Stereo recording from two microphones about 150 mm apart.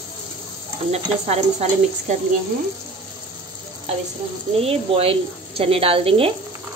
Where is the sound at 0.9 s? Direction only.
45° right (ahead or behind).